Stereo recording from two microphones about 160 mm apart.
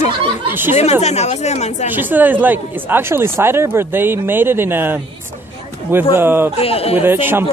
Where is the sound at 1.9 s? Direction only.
10° right (ahead or behind).